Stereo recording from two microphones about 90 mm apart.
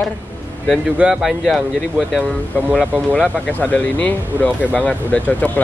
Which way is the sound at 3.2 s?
15° left (ahead or behind).